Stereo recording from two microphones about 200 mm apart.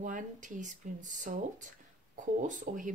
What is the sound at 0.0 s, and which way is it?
Speech, 40° right (ahead or behind).